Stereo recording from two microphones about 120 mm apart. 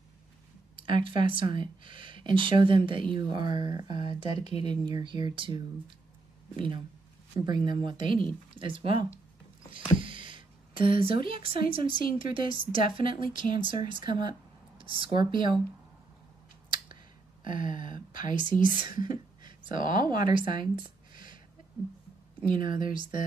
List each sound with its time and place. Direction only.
0.7 s speech: 45° right (ahead or behind)
4.4 s speech: 60° left (ahead or behind)
4.8 s speech: 40° right (ahead or behind)
17.6 s speech: 90° left
18.3 s a woman's voice: 45° right (ahead or behind)
21.1 s a sound: 40° right (ahead or behind)
22.5 s speech: 40° right (ahead or behind)